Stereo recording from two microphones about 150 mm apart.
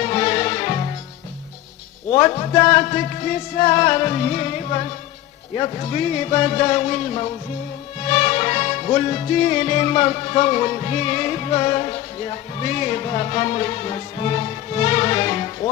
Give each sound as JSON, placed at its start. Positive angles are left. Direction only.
{"t": 0.0, "sound": "music", "side_deg": 35}
{"t": 2.1, "sound": "music", "side_deg": 40}